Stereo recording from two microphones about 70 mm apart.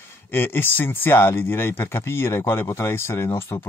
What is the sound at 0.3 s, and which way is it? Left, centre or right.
Speech, left.